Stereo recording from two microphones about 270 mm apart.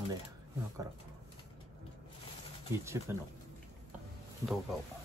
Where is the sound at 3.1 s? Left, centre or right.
Centre.